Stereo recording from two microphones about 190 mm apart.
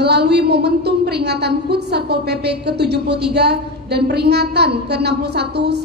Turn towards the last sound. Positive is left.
turn(degrees=-60)  # may be behind; listen again after turning